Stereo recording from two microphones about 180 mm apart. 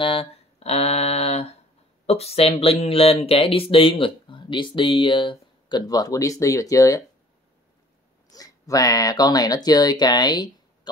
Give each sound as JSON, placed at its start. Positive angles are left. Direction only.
{"t": 0.0, "sound": "a sound", "side_deg": 30}
{"t": 2.0, "sound": "speech", "side_deg": 35}
{"t": 8.3, "sound": "speech", "side_deg": 20}